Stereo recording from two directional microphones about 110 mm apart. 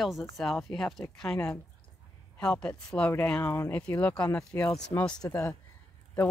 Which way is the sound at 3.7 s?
15° left (ahead or behind).